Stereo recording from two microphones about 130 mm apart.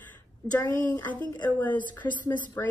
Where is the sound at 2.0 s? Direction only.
15° left (ahead or behind).